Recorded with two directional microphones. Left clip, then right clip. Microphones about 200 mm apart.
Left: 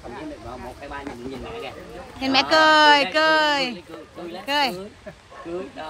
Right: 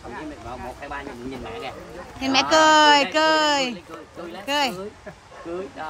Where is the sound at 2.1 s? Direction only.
10° right (ahead or behind).